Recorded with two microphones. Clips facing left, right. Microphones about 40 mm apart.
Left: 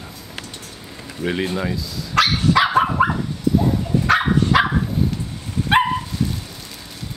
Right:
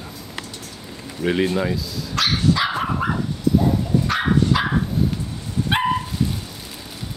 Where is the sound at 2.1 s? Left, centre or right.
Left.